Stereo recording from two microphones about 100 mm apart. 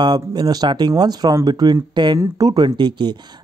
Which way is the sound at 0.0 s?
40° right (ahead or behind).